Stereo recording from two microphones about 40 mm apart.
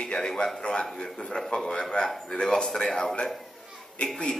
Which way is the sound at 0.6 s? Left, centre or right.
Left.